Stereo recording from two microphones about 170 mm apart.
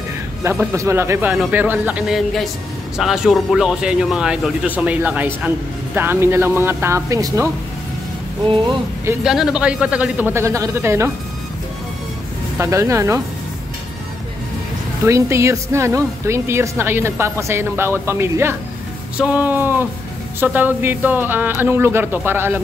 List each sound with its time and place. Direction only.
0.4 s a man's voice: 15° right (ahead or behind)
9.2 s speech: 5° right (ahead or behind)
12.5 s speech: 15° right (ahead or behind)
15.0 s speech: 15° right (ahead or behind)